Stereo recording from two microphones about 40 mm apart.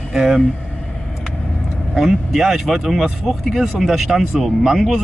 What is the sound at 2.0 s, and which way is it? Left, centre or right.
Speech, centre.